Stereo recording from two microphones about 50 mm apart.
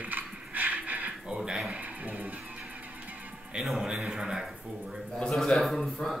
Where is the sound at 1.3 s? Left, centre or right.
Centre.